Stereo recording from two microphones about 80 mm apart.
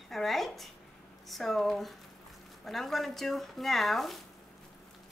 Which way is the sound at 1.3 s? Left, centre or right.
Centre.